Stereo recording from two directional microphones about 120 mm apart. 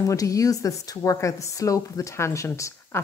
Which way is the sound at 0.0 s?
25° left (ahead or behind).